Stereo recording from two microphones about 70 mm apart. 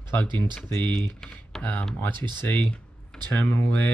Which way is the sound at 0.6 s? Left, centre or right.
Centre.